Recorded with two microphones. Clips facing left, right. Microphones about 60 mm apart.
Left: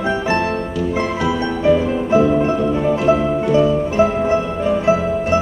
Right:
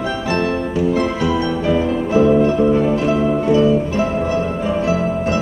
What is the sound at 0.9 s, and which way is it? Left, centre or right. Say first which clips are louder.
Music: right 1 dB; left.